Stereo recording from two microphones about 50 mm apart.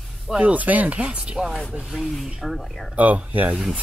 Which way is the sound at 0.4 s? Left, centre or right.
Right.